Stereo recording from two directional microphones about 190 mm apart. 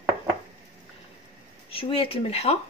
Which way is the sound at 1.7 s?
30° left (ahead or behind).